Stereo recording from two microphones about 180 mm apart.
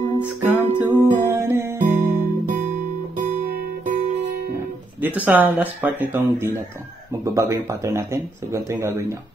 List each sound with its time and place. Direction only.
0.4 s music: 10° right (ahead or behind)
5.2 s speech: 10° right (ahead or behind)
7.2 s speech: 15° right (ahead or behind)